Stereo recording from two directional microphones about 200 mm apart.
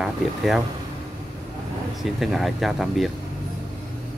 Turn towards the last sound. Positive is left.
turn(degrees=0)  # may be behind; listen again after turning